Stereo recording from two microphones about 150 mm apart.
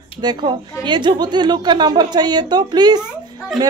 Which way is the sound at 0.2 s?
25° right (ahead or behind).